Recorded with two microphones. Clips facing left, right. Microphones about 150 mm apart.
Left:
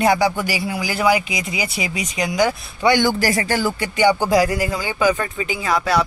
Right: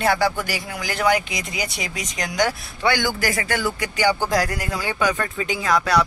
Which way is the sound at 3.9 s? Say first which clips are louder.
Left 5 dB; 20° left (ahead or behind).